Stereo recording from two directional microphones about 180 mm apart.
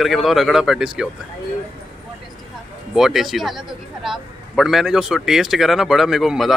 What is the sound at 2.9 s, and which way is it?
A man's voice, centre (ahead or behind).